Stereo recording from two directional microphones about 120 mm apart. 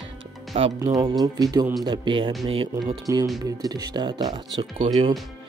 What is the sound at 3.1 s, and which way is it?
Speech, 25° right (ahead or behind).